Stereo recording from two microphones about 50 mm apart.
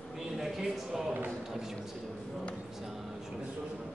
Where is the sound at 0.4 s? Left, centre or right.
Centre.